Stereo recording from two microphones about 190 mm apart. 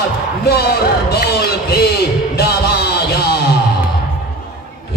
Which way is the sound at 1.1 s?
55° left (ahead or behind).